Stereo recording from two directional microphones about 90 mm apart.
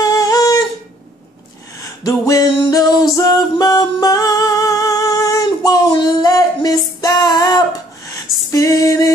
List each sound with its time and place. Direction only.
0.0 s humming: 40° left (ahead or behind)
1.8 s a sound: 40° left (ahead or behind)
2.7 s music: 45° left (ahead or behind)